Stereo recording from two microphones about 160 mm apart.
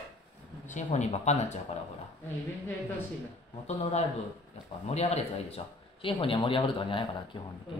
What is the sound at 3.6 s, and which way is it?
Speech, 40° left (ahead or behind).